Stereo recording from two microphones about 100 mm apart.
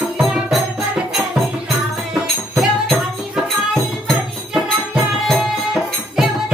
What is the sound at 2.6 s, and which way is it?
Music, centre (ahead or behind).